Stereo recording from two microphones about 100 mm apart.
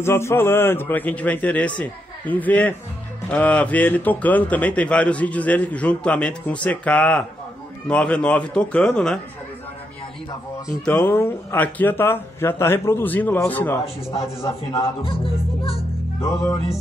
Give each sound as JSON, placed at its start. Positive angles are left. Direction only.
{"t": 0.0, "sound": "a man's voice", "side_deg": 25}
{"t": 11.1, "sound": "a man's voice", "side_deg": 20}
{"t": 14.1, "sound": "speech", "side_deg": 80}
{"t": 16.2, "sound": "speech", "side_deg": 30}